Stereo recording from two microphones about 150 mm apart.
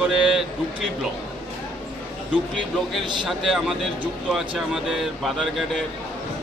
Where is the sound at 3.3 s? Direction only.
Centre (ahead or behind).